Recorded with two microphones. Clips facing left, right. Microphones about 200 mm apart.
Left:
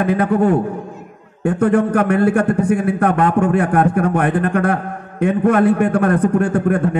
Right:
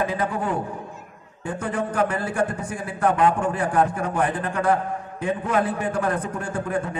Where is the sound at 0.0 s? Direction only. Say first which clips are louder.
Left 10 dB; 60° left (ahead or behind).